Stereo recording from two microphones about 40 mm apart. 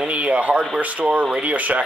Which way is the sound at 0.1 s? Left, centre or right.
Right.